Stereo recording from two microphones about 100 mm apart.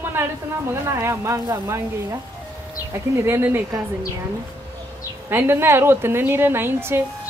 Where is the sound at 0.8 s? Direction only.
25° right (ahead or behind).